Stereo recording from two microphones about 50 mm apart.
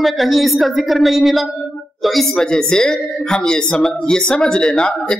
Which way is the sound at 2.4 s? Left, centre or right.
Centre.